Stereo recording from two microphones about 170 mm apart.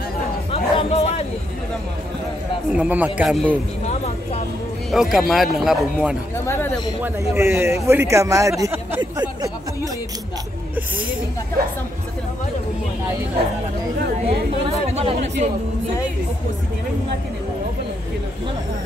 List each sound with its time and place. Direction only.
0.5 s chatter: 35° left (ahead or behind)
2.7 s a man's voice: 10° right (ahead or behind)
3.8 s vehicle: 40° left (ahead or behind)
4.9 s speech: centre (ahead or behind)
6.3 s speech: 15° left (ahead or behind)
7.0 s a man's voice: 15° right (ahead or behind)
14.7 s speech: 35° right (ahead or behind)